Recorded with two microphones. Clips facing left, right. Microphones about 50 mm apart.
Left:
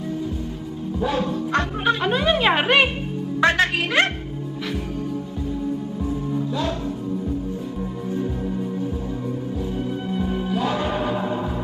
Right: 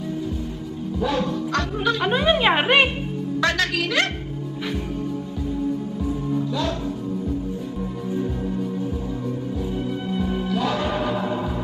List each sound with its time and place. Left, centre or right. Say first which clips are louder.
0.9 s music: even; centre
2.0 s a woman's voice: right 2 dB; centre
3.3 s speech: left 4 dB; left
8.2 s music: even; centre
10.0 s music: even; centre